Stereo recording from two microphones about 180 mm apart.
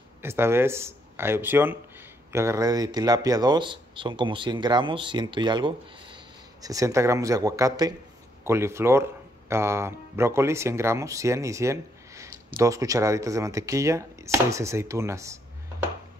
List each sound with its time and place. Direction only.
0.2 s speech: 15° right (ahead or behind)